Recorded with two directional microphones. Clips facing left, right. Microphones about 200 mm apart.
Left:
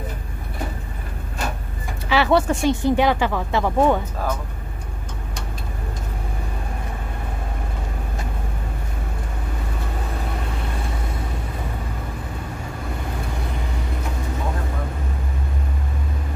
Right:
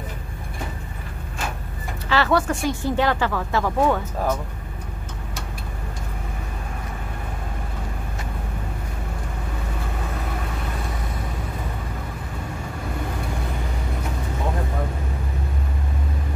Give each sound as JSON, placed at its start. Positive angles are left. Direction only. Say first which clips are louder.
{"t": 2.0, "sound": "speech", "louder": "left 2 dB", "side_deg": 15}
{"t": 2.3, "sound": "speech", "louder": "left 3 dB", "side_deg": 25}